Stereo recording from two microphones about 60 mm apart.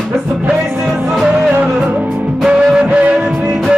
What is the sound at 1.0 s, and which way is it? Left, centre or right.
Music, centre.